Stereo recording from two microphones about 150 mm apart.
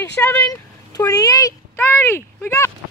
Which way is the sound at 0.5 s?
25° left (ahead or behind).